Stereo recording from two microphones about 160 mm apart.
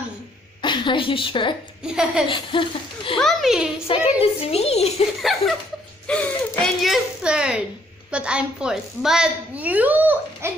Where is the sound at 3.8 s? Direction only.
40° left (ahead or behind).